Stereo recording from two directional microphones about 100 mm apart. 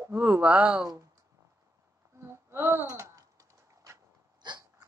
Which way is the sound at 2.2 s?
25° right (ahead or behind).